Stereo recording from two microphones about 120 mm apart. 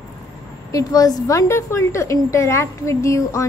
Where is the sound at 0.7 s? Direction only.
30° left (ahead or behind).